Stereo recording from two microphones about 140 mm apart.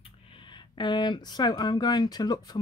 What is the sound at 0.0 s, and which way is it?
Speech, 40° left (ahead or behind).